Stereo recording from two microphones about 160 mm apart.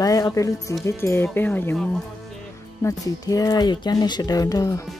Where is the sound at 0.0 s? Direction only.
20° left (ahead or behind).